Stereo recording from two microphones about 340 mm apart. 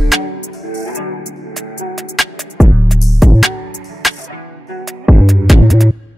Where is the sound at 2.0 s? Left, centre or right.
Centre.